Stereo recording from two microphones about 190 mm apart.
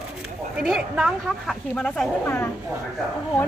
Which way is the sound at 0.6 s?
5° right (ahead or behind).